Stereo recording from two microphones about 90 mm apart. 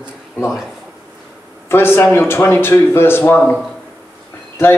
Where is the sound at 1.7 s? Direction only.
25° left (ahead or behind).